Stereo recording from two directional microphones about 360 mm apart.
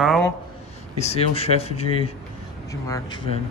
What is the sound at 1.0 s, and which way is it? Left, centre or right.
Speech, centre.